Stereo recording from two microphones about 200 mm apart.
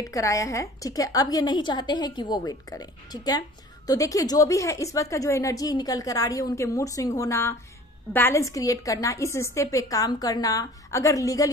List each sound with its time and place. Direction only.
0.0 s a woman's voice: 15° left (ahead or behind)